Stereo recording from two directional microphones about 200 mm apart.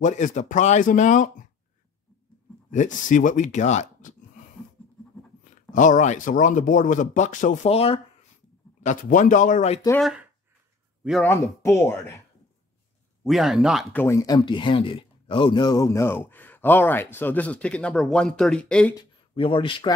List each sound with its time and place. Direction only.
0.0 s speech: 40° left (ahead or behind)
2.7 s speech: 40° left (ahead or behind)
5.7 s speech: 40° left (ahead or behind)
9.8 s speech: centre (ahead or behind)
11.6 s speech: 10° left (ahead or behind)
13.2 s speech: centre (ahead or behind)
14.0 s speech: 15° left (ahead or behind)
18.9 s speech: 25° left (ahead or behind)